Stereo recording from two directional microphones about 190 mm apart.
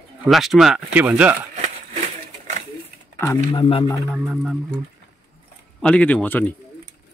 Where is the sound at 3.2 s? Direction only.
15° left (ahead or behind).